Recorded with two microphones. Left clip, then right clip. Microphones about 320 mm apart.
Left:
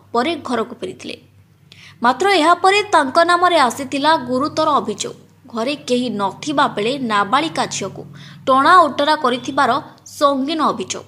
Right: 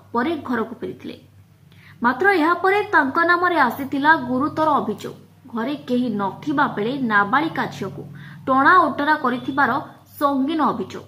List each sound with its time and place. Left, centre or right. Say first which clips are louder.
0.1 s a woman's voice: left 4 dB; centre
2.2 s a woman's voice: left 4 dB; centre